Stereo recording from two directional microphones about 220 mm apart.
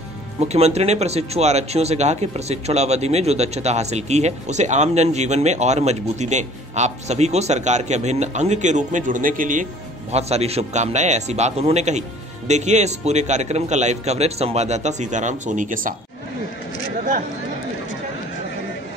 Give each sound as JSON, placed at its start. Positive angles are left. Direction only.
{"t": 0.4, "sound": "speech", "side_deg": -30}